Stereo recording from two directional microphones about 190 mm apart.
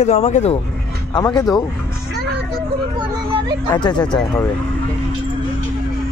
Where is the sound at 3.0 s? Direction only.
25° right (ahead or behind).